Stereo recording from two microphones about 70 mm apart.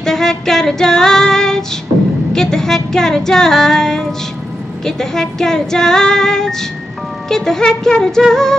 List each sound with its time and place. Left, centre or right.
0.0 s female singing: centre
2.3 s music: centre